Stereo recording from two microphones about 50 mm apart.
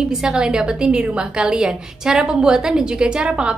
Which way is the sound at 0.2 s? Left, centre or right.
Centre.